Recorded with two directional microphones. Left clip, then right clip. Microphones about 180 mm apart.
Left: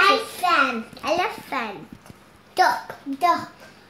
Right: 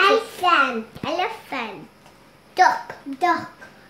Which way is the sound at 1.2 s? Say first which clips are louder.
Even; 15° left (ahead or behind).